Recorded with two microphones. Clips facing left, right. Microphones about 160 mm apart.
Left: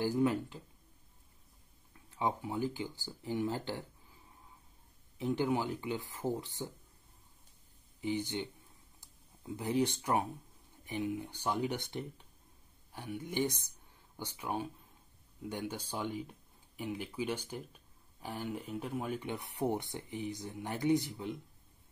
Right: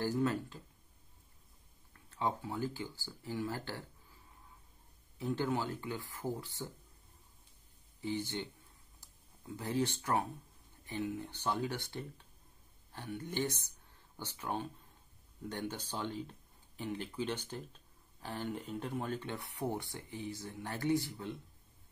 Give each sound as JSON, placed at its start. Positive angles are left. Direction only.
{"t": 0.0, "sound": "speech", "side_deg": 15}
{"t": 2.0, "sound": "speech", "side_deg": 15}
{"t": 5.2, "sound": "speech", "side_deg": 15}
{"t": 8.0, "sound": "speech", "side_deg": 15}
{"t": 9.6, "sound": "speech", "side_deg": 15}